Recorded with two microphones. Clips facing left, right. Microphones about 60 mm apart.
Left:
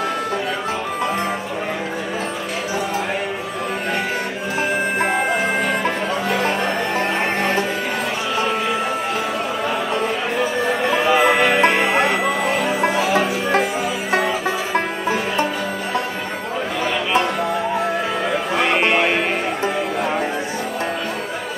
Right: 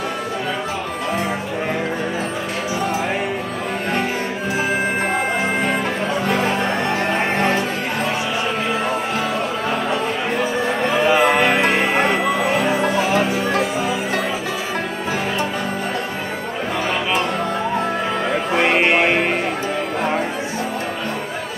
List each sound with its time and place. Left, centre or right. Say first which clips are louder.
6.3 s music: even; centre
10.8 s music: right 1 dB; centre
18.6 s music: right 1 dB; centre